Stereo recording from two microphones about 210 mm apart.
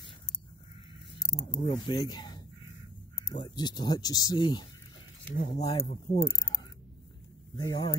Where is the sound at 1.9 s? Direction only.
20° left (ahead or behind).